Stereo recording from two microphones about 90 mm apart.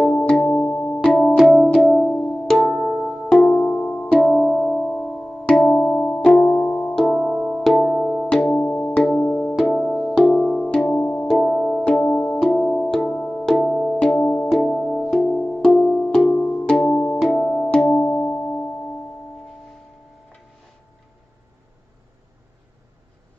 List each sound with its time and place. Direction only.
0.2 s music: 20° left (ahead or behind)
1.1 s music: centre (ahead or behind); by 7.6 s 15° left (ahead or behind)
7.6 s music: 5° left (ahead or behind)
9.6 s music: 5° left (ahead or behind)
13.6 s music: centre (ahead or behind)
14.0 s music: 15° left (ahead or behind)
14.5 s music: 5° left (ahead or behind)
17.2 s music: centre (ahead or behind)